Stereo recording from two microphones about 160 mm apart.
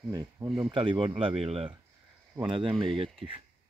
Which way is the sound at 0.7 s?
30° right (ahead or behind).